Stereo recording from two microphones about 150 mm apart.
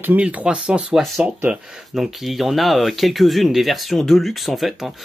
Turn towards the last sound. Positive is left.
turn(degrees=0)  # may be behind; listen again after turning